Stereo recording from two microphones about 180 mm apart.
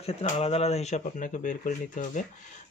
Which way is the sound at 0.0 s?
35° left (ahead or behind).